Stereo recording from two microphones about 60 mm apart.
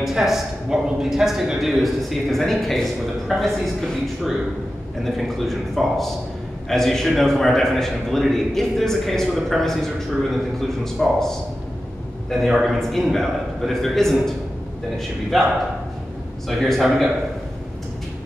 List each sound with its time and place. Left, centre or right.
0.0 s a man's voice: centre
15.3 s a man's voice: centre